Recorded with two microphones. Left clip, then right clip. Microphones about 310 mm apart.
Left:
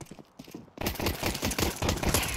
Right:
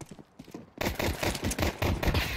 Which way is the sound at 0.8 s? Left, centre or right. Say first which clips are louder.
Right 2 dB; centre.